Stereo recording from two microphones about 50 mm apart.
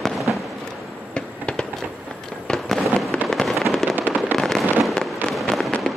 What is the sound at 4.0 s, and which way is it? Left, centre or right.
Fireworks, right.